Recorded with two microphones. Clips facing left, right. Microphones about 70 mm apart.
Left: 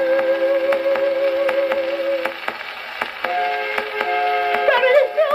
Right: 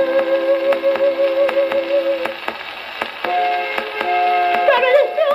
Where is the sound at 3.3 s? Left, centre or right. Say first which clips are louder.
Right 4 dB; left.